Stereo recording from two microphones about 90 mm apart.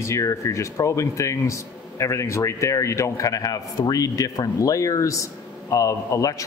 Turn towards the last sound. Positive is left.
turn(degrees=40)  # may be behind; listen again after turning